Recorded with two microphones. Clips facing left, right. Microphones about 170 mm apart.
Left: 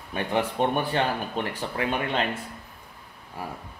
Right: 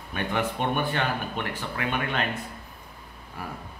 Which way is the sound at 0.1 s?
30° left (ahead or behind).